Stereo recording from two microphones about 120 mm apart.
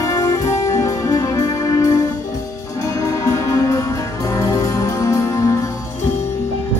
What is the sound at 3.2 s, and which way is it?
Music, 30° left (ahead or behind).